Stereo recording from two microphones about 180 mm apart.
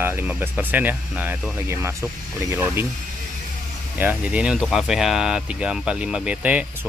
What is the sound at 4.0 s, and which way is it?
Speech, 10° right (ahead or behind).